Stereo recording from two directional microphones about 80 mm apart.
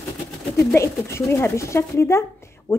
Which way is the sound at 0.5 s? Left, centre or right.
Left.